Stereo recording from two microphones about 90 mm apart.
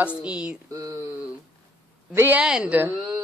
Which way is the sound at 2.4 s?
10° right (ahead or behind).